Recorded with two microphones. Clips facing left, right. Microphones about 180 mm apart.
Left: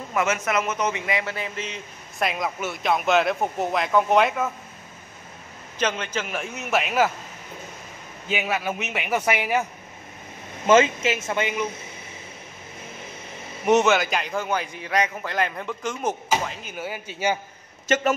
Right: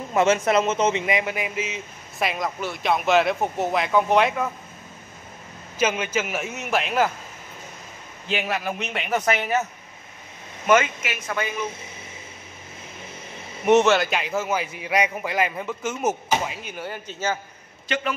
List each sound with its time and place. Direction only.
0.1 s a man's voice: 30° right (ahead or behind); by 4.5 s centre (ahead or behind)
5.8 s a man's voice: 10° right (ahead or behind)
8.3 s a man's voice: centre (ahead or behind)
10.7 s speech: 25° left (ahead or behind)
13.7 s a man's voice: centre (ahead or behind)
17.8 s a man's voice: 45° left (ahead or behind)